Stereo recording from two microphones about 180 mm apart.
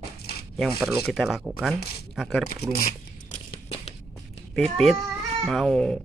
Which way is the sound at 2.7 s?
50° left (ahead or behind).